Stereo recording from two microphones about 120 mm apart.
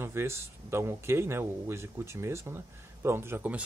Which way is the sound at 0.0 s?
20° right (ahead or behind).